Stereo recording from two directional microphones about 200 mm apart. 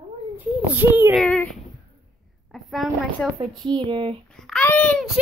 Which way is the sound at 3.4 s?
25° right (ahead or behind).